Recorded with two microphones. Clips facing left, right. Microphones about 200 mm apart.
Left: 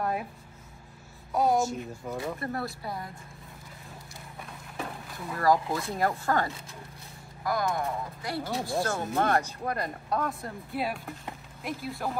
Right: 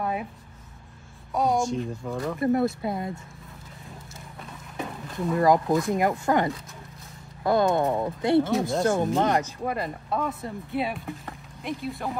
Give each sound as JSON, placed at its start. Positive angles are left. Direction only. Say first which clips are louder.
{"t": 0.0, "sound": "speech", "louder": "right 2 dB", "side_deg": 0}
{"t": 1.3, "sound": "speech", "louder": "right 1 dB", "side_deg": 5}
{"t": 2.4, "sound": "speech", "louder": "right 11 dB", "side_deg": -20}
{"t": 5.1, "sound": "speech", "louder": "right 5 dB", "side_deg": -20}
{"t": 9.7, "sound": "speech", "louder": "right 2 dB", "side_deg": 0}